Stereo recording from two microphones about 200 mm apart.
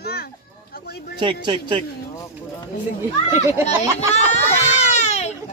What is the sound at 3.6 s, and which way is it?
Baby cry, 35° left (ahead or behind).